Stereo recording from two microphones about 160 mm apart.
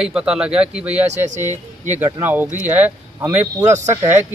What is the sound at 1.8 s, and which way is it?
Speech, 10° right (ahead or behind).